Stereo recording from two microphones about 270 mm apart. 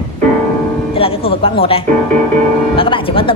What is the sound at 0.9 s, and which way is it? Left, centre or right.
A woman's voice, left.